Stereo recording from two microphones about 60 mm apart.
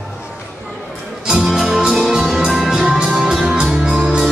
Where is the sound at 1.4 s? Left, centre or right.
Centre.